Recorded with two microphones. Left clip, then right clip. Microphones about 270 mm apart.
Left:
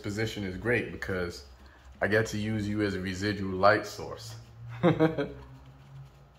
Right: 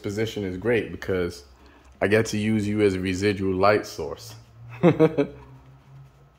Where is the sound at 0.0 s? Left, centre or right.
Right.